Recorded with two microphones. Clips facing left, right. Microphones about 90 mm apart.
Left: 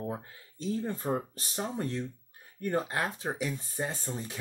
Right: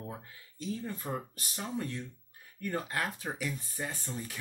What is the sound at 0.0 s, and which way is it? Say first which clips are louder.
Speech: left 7 dB; 35° left (ahead or behind).